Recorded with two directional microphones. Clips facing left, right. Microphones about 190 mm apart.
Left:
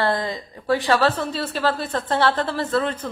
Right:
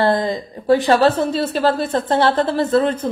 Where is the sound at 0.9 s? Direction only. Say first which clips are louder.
Right 5 dB; 25° right (ahead or behind).